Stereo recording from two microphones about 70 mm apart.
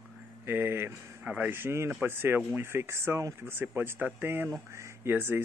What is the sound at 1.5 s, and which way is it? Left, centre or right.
Speech, right.